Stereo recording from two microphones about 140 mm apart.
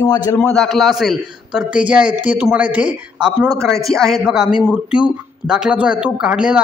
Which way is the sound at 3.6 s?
5° left (ahead or behind).